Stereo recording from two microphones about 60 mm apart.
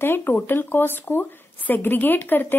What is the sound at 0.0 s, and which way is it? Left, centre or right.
Speech, left.